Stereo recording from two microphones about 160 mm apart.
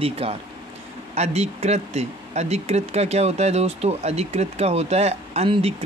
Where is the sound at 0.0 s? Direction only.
35° right (ahead or behind).